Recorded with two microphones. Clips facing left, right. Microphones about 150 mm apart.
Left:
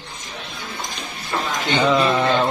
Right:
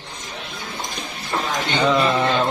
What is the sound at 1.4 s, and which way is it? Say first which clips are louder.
Music: left 1 dB; centre (ahead or behind).